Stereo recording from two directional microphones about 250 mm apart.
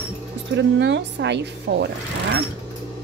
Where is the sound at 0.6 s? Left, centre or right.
Right.